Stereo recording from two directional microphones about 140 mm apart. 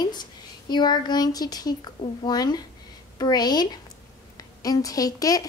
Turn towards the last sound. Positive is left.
turn(degrees=25)  # may be behind; listen again after turning